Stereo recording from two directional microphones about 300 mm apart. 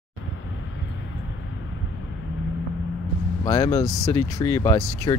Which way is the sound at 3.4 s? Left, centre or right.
Centre.